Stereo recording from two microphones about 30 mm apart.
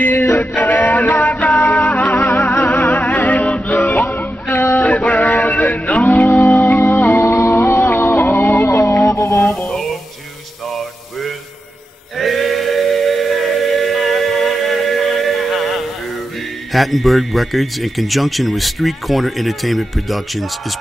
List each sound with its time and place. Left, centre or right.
0.0 s music: left
4.8 s music: left
12.2 s a sound: centre
16.7 s speech: centre